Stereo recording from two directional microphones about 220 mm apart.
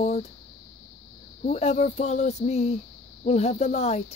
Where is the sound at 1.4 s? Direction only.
30° left (ahead or behind).